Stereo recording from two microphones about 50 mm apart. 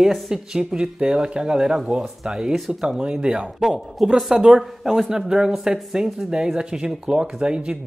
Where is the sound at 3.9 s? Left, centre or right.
Centre.